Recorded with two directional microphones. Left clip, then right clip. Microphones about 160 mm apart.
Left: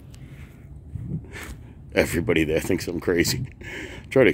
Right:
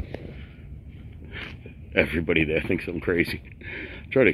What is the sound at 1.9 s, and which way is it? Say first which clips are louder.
Speech: left 1 dB; 30° left (ahead or behind).